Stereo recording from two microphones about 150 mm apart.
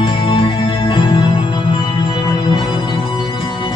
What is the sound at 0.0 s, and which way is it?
Music, 35° left (ahead or behind).